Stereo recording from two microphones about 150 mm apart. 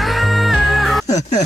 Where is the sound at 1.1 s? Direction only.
50° left (ahead or behind).